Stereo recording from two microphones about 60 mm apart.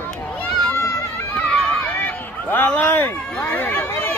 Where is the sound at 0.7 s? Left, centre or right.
Left.